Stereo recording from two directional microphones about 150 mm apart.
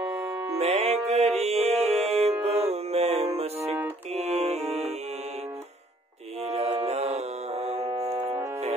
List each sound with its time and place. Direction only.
0.6 s music: 45° right (ahead or behind)
6.4 s music: 45° right (ahead or behind)
8.1 s music: 20° right (ahead or behind)